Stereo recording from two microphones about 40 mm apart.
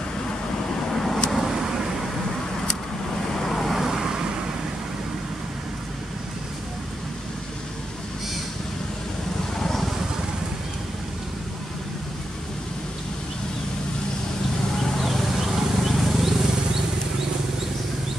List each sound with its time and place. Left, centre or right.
0.8 s vehicle: centre
1.3 s vehicle: centre
3.3 s vehicle: centre
3.8 s vehicle: centre
9.6 s a sound: centre
14.8 s wild animals: centre